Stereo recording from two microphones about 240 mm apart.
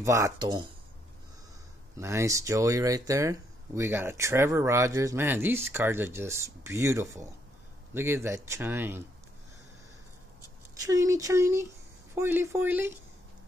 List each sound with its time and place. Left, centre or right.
0.0 s speech: centre
2.0 s speech: centre
10.7 s speech: centre